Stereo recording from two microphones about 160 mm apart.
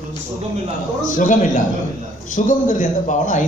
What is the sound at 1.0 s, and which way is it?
A man's voice, 55° left (ahead or behind).